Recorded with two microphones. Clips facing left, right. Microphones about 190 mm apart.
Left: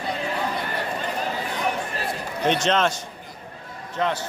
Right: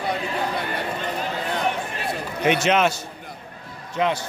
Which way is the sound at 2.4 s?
10° right (ahead or behind).